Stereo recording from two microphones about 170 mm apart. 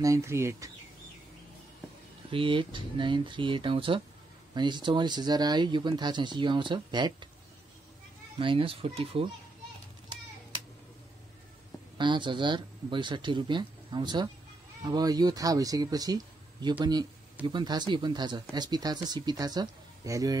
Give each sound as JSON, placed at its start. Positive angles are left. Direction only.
{"t": 0.0, "sound": "speech", "side_deg": -15}
{"t": 2.3, "sound": "speech", "side_deg": -30}
{"t": 8.4, "sound": "speech", "side_deg": -30}
{"t": 12.0, "sound": "speech", "side_deg": -25}